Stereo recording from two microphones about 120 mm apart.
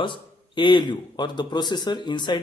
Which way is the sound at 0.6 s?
40° left (ahead or behind).